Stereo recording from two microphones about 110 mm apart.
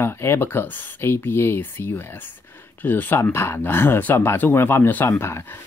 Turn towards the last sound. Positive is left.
turn(degrees=20)  # may be behind; listen again after turning